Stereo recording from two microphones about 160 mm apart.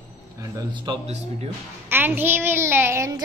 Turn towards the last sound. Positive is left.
turn(degrees=-15)  # may be behind; listen again after turning